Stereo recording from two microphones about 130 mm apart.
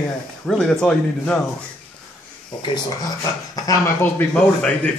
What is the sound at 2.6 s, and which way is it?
Speech, 30° left (ahead or behind).